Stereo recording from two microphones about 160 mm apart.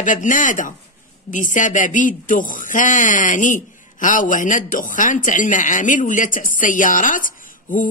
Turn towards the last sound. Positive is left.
turn(degrees=55)  # may be behind; listen again after turning